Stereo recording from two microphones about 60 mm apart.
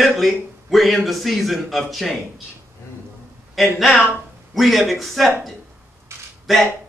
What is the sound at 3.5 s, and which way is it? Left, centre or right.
Speech, centre.